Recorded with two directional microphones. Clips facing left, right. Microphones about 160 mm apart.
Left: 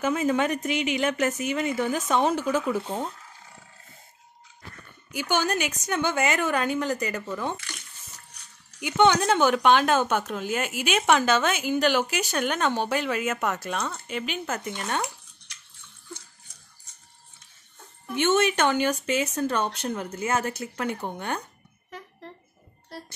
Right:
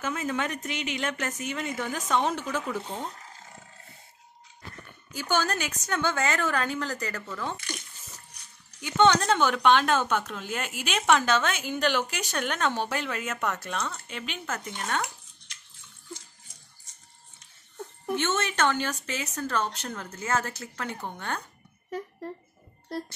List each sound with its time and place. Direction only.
0.0 s a woman's voice: 15° left (ahead or behind)
5.3 s a woman's voice: 15° left (ahead or behind)
8.8 s a woman's voice: 15° left (ahead or behind)
14.4 s speech: 20° left (ahead or behind)
18.1 s a woman's voice: 15° left (ahead or behind)